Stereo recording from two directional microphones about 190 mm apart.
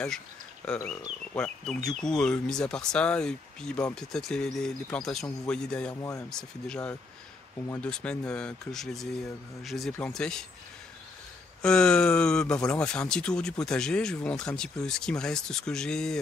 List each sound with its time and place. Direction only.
0.7 s speech: 15° left (ahead or behind)
5.9 s speech: 15° left (ahead or behind)
6.3 s speech: 5° left (ahead or behind)
11.6 s speech: 5° left (ahead or behind)